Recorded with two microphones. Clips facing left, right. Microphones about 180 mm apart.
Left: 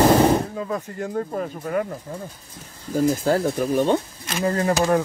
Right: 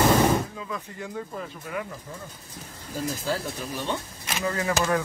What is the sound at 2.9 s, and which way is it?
Speech, 50° left (ahead or behind).